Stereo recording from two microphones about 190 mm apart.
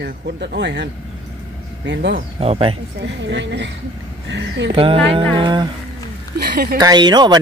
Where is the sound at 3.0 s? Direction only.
70° right (ahead or behind).